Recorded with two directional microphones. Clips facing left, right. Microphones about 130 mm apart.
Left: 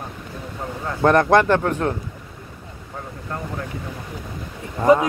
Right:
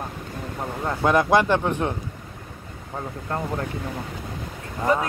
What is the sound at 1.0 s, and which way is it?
Speech, 10° right (ahead or behind).